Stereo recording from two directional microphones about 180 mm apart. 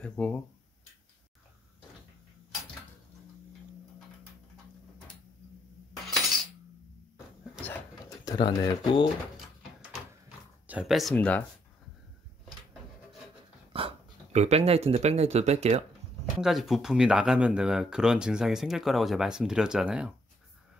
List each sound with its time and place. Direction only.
0.0 s speech: 5° left (ahead or behind)
8.3 s speech: 20° left (ahead or behind)
10.7 s speech: 5° right (ahead or behind)
13.7 s speech: 35° right (ahead or behind)
16.3 s speech: centre (ahead or behind)